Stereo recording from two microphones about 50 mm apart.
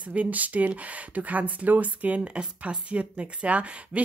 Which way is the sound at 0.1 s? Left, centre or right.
Right.